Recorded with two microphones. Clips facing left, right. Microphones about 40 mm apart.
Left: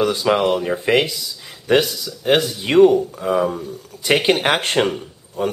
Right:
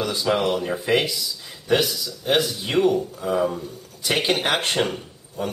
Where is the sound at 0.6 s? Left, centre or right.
Centre.